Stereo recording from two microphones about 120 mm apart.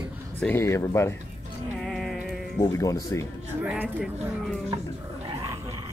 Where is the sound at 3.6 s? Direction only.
10° right (ahead or behind).